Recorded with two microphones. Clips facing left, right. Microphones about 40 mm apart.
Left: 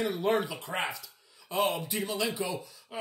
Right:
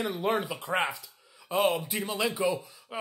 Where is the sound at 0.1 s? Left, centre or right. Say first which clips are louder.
Left 1 dB; centre.